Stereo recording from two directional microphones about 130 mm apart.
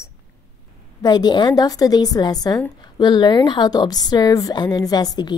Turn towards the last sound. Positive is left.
turn(degrees=30)  # may be behind; listen again after turning